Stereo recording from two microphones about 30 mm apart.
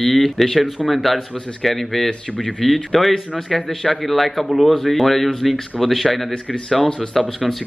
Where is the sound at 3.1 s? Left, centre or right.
Centre.